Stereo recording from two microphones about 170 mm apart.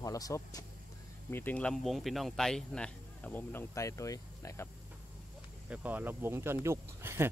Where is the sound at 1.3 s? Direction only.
10° left (ahead or behind).